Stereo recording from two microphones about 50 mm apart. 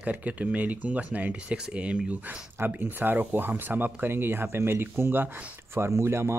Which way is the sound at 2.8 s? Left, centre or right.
Right.